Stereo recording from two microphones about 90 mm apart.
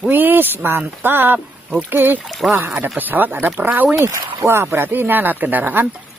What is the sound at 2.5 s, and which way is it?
Speech, 30° right (ahead or behind).